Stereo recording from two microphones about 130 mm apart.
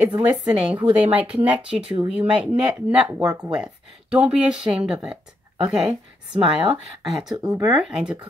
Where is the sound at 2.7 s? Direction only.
5° right (ahead or behind).